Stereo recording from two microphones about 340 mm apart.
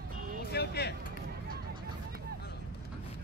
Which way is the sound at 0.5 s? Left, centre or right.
Left.